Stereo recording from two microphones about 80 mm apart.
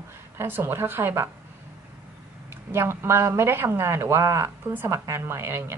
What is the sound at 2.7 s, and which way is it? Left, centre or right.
A woman's voice, right.